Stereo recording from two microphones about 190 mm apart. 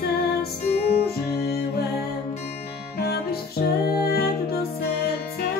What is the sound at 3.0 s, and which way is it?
Music, 55° left (ahead or behind).